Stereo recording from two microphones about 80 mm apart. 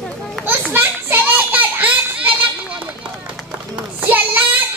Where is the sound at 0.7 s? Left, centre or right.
Right.